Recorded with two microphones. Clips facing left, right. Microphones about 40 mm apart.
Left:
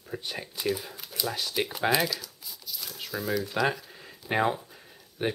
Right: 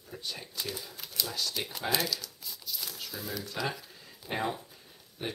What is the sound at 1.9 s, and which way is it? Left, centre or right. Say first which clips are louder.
Crumpling: left 5 dB; centre.